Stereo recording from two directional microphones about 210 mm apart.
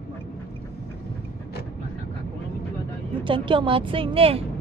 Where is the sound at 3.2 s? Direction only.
25° right (ahead or behind).